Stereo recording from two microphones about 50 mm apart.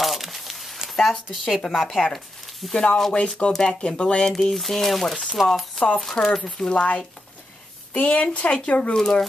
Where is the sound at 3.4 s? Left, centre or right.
Left.